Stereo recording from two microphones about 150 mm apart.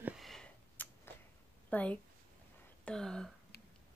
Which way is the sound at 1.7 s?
10° left (ahead or behind).